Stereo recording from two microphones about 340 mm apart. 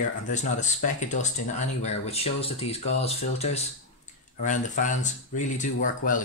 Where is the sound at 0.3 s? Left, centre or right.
Left.